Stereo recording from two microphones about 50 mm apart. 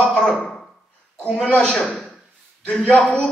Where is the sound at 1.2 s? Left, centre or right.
Left.